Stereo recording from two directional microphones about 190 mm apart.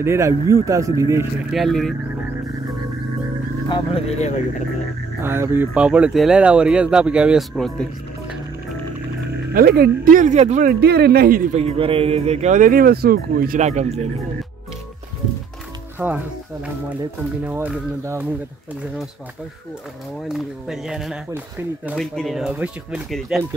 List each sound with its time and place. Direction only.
0.0 s speech: 15° right (ahead or behind)
1.5 s speech: centre (ahead or behind)
3.6 s speech: 30° left (ahead or behind)
5.2 s speech: 10° right (ahead or behind)
9.5 s speech: 55° right (ahead or behind); by 10.7 s 35° right (ahead or behind)
10.7 s speech: 55° right (ahead or behind)
11.5 s speech: 30° right (ahead or behind)
16.0 s speech: 10° right (ahead or behind)
17.5 s speech: 10° right (ahead or behind)
20.2 s speech: centre (ahead or behind)
21.9 s speech: centre (ahead or behind)